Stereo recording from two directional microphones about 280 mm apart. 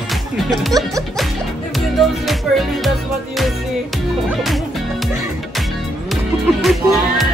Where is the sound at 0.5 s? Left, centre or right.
Centre.